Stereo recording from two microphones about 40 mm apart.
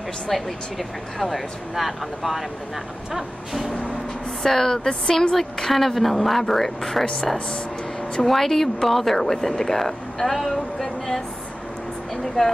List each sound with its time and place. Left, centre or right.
0.3 s speech: centre
3.1 s vehicle: centre
4.4 s speech: centre
7.3 s speech: centre
8.1 s speech: centre